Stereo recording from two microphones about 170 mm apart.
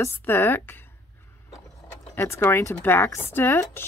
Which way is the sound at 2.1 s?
15° left (ahead or behind).